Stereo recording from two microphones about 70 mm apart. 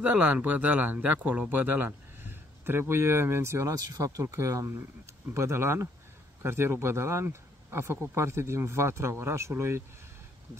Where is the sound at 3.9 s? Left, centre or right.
Right.